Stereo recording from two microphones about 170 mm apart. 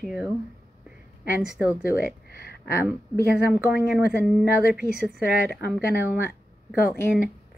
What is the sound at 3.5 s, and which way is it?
Speech, 5° right (ahead or behind).